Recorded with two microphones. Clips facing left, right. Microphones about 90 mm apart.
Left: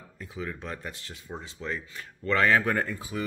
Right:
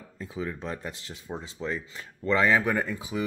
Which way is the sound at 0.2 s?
25° right (ahead or behind).